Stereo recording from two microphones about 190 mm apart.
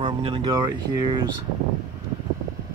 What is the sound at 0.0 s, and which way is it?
Speech, 30° right (ahead or behind).